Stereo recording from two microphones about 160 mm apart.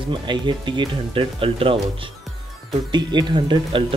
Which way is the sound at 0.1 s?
30° right (ahead or behind).